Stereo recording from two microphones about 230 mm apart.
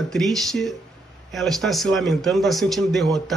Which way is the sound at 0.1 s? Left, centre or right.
Centre.